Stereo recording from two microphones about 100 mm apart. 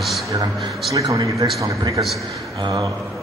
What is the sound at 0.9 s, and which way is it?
Speech, 35° right (ahead or behind).